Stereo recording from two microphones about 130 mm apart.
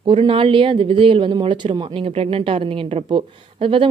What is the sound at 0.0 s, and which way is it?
A woman's voice, 40° right (ahead or behind).